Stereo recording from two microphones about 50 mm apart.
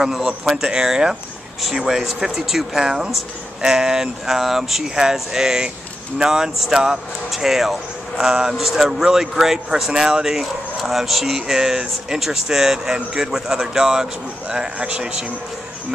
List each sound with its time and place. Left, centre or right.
0.0 s speech: centre
1.6 s a man's voice: centre